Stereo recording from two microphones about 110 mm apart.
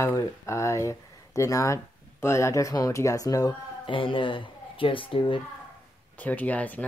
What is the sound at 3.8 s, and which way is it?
Speech, 50° left (ahead or behind).